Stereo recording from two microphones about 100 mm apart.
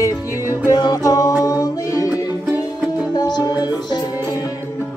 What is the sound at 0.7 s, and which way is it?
Music, 40° left (ahead or behind).